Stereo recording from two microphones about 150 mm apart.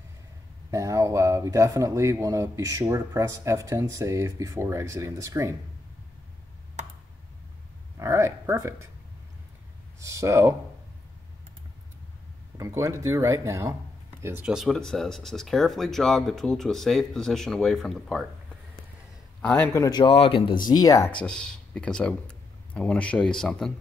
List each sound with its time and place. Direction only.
0.7 s a man's voice: 20° right (ahead or behind)
8.0 s speech: 20° right (ahead or behind)
9.9 s speech: 20° right (ahead or behind)
12.5 s a man's voice: 20° right (ahead or behind)
14.5 s speech: centre (ahead or behind)
19.4 s a man's voice: 10° left (ahead or behind)
20.0 s speech: 35° left (ahead or behind)
21.1 s speech: 5° left (ahead or behind)